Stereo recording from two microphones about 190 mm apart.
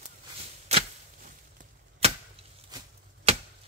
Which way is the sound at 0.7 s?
30° right (ahead or behind).